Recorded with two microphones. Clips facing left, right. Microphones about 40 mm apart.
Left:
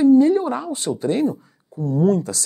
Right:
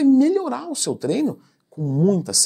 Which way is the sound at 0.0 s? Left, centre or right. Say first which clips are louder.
Left 2 dB; left.